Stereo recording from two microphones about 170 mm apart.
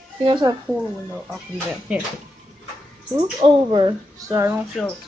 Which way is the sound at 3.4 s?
30° right (ahead or behind).